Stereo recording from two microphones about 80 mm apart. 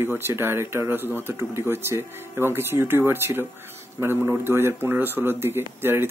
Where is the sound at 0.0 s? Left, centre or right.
Right.